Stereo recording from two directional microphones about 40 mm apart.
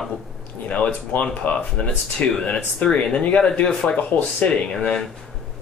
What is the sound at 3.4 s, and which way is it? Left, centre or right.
Speech, left.